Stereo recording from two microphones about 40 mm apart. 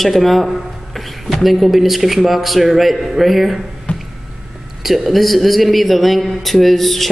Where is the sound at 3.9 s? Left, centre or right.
Left.